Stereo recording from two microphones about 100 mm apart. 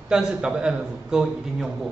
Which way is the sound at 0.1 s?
5° right (ahead or behind).